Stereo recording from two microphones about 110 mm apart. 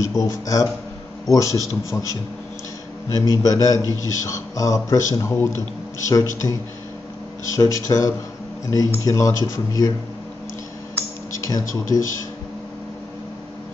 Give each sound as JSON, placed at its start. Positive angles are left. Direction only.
{"t": 0.1, "sound": "a man's voice", "side_deg": 30}
{"t": 3.1, "sound": "a man's voice", "side_deg": 30}
{"t": 7.5, "sound": "a man's voice", "side_deg": 30}
{"t": 11.4, "sound": "a man's voice", "side_deg": 30}